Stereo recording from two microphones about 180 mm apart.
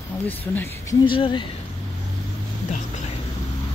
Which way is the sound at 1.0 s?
30° left (ahead or behind).